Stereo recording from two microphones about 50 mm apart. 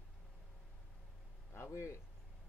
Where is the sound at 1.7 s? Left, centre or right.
Left.